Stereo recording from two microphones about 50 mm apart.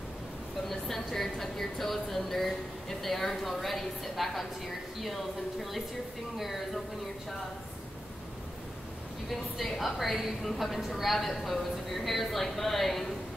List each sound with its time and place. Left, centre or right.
0.7 s speech: centre
9.3 s speech: centre